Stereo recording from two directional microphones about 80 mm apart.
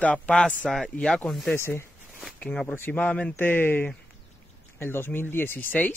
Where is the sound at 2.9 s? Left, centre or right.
Left.